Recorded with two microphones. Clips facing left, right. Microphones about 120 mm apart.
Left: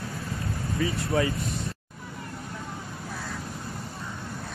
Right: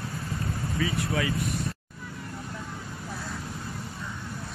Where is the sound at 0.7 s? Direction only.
30° left (ahead or behind).